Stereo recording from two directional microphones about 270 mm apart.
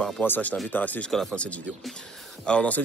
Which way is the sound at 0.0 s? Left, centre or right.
Centre.